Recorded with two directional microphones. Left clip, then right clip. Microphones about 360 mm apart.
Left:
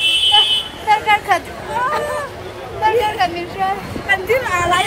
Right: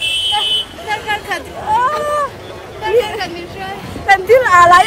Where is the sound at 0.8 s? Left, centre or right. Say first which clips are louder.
Left 5 dB; centre.